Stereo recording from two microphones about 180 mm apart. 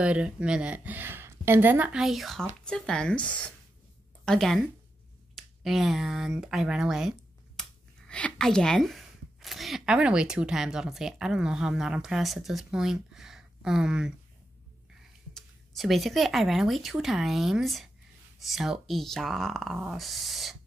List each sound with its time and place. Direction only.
0.0 s a woman's voice: 5° right (ahead or behind)
15.3 s speech: centre (ahead or behind)